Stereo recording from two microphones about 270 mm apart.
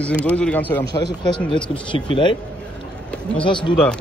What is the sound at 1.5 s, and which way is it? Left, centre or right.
Speech, centre.